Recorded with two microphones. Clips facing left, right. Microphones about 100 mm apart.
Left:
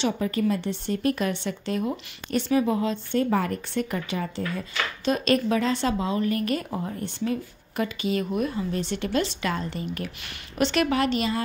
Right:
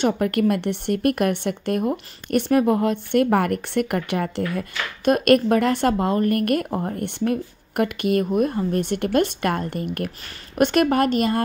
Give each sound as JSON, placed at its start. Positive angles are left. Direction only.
{"t": 0.0, "sound": "a woman's voice", "side_deg": -65}